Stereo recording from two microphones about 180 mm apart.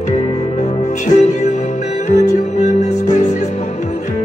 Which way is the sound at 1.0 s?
40° left (ahead or behind).